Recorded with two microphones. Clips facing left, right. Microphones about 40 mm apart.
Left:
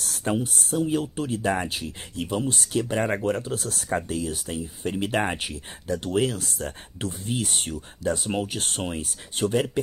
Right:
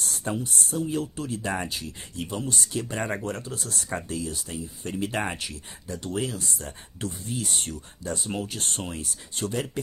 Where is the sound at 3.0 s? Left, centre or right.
Centre.